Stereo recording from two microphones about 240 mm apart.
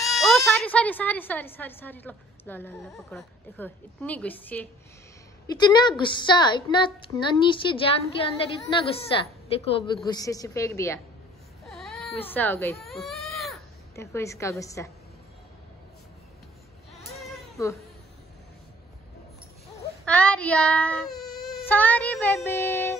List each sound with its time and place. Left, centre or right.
0.0 s speech: centre
5.6 s a woman's voice: centre
11.6 s baby cry: centre
13.9 s speech: centre
17.2 s cat: centre
20.1 s speech: centre